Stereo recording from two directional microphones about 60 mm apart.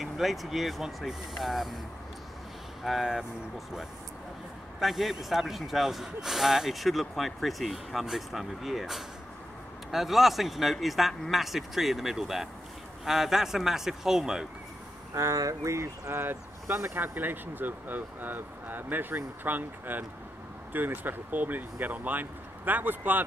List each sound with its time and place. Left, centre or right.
0.0 s speech: centre
2.8 s a man's voice: centre
15.1 s speech: right
16.2 s speech: right